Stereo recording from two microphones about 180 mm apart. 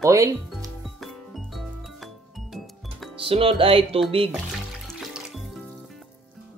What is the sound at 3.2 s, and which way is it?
Speech, 30° right (ahead or behind).